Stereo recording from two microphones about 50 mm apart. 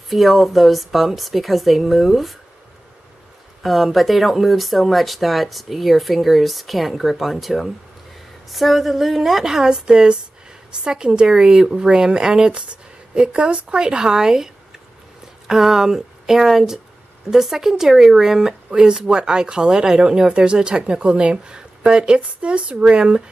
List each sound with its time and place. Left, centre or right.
0.1 s speech: centre
3.6 s speech: centre; by 23.2 s right